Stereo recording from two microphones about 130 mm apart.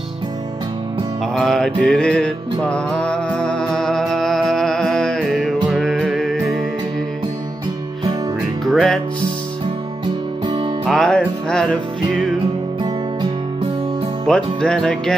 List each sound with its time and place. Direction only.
1.3 s music: 5° left (ahead or behind)
8.6 s music: centre (ahead or behind)
10.9 s music: 5° left (ahead or behind)
14.2 s music: 5° left (ahead or behind)